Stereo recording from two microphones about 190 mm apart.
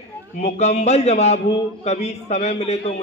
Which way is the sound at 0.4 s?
35° left (ahead or behind).